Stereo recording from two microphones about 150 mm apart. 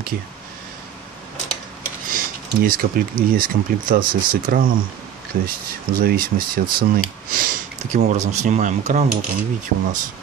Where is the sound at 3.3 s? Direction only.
70° right (ahead or behind).